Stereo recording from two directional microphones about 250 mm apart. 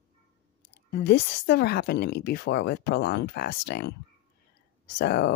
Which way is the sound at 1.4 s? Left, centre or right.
Left.